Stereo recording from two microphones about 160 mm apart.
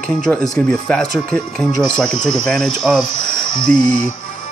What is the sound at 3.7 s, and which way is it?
Music, 55° right (ahead or behind).